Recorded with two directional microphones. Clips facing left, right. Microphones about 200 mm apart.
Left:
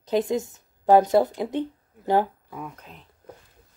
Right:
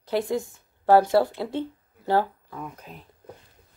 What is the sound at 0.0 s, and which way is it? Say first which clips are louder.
Speech: left 2 dB; 20° left (ahead or behind).